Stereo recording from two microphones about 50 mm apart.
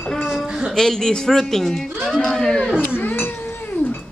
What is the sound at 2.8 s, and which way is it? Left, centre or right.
Cat, left.